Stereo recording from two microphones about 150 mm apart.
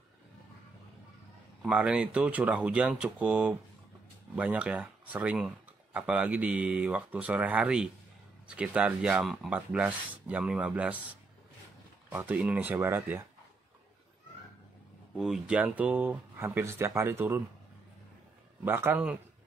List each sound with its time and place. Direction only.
1.6 s speech: 5° right (ahead or behind)
15.1 s speech: centre (ahead or behind)
18.6 s speech: 15° right (ahead or behind)